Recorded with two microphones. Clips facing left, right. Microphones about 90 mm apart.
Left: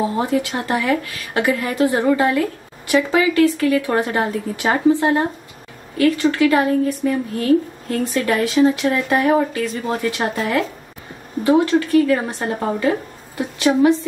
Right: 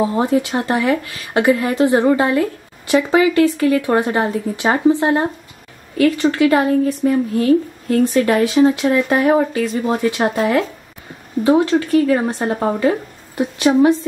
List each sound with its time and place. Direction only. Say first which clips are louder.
0.1 s speech: right 3 dB; 25° right (ahead or behind)
11.6 s speech: right 1 dB; 25° right (ahead or behind)